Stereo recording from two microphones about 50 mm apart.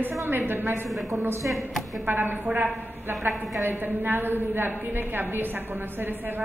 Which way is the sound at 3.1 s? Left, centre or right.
Right.